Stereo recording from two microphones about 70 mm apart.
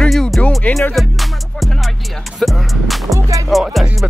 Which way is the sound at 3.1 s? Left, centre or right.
Right.